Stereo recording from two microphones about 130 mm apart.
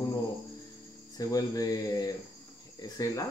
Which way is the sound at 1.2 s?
25° left (ahead or behind).